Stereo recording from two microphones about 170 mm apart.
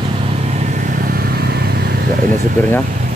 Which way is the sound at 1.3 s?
65° right (ahead or behind).